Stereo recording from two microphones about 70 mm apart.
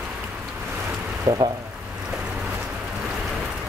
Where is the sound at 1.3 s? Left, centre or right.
Right.